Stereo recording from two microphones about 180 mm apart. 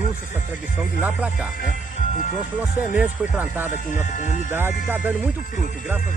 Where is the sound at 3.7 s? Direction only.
45° left (ahead or behind).